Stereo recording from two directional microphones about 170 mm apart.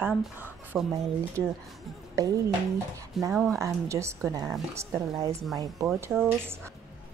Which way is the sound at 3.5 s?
15° right (ahead or behind).